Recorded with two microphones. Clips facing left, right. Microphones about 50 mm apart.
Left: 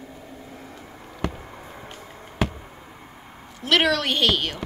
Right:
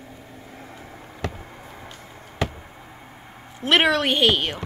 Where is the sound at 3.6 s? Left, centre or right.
Right.